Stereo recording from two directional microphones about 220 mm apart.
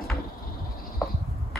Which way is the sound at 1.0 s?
Centre (ahead or behind).